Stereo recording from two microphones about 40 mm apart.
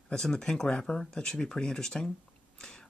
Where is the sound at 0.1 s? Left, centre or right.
Centre.